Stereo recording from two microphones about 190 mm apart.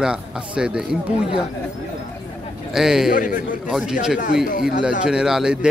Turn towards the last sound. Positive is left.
turn(degrees=-5)  # may be behind; listen again after turning